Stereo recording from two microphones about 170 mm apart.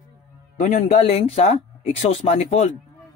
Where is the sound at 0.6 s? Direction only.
45° left (ahead or behind).